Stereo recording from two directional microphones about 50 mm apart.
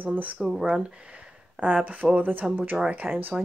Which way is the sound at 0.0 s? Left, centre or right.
Right.